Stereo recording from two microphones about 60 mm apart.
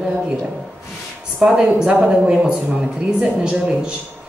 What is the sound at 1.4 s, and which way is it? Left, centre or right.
A woman's voice, centre.